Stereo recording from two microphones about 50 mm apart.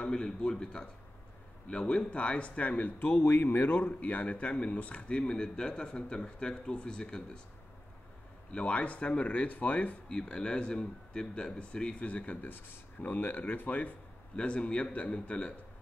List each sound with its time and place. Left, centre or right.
0.0 s speech: centre
8.5 s speech: left
10.0 s speech: centre; by 13.9 s left
14.3 s speech: left